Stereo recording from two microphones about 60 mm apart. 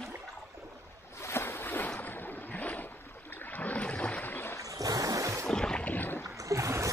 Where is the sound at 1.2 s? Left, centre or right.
Left.